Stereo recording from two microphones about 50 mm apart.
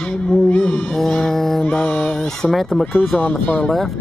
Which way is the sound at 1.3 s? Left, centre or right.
Centre.